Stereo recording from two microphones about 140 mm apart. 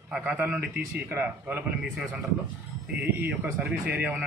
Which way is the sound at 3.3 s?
15° right (ahead or behind).